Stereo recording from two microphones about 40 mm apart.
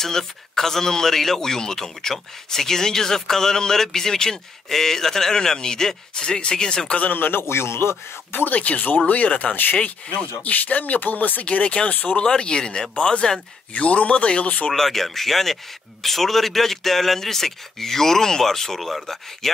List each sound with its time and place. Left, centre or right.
0.0 s speech: centre
7.1 s speech: left
7.4 s speech: left
8.4 s speech: left
11.4 s speech: left
11.9 s speech: left
12.2 s speech: left
13.7 s speech: left
14.7 s speech: centre